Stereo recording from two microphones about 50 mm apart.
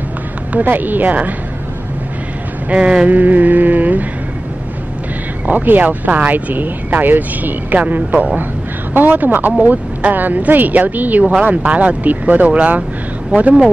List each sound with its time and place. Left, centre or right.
0.5 s speech: right
2.7 s a sound: right
3.1 s speech: right
5.5 s speech: right